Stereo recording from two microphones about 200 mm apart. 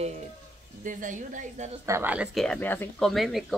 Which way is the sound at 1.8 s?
10° right (ahead or behind).